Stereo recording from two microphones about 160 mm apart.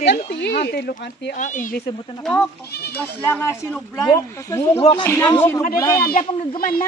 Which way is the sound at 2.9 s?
15° left (ahead or behind).